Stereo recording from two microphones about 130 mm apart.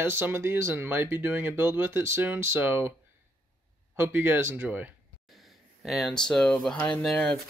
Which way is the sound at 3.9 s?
15° right (ahead or behind).